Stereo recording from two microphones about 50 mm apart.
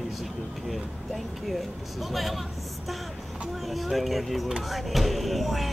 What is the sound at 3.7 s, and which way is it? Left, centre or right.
Speech, centre.